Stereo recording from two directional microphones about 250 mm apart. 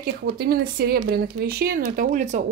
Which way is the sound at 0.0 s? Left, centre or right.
Right.